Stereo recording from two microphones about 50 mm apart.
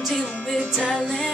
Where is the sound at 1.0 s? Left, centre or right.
Centre.